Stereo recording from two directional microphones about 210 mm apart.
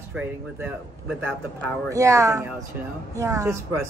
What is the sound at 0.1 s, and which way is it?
Speech, 5° right (ahead or behind).